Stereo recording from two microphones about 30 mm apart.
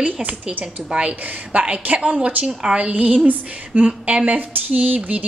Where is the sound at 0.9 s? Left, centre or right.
Right.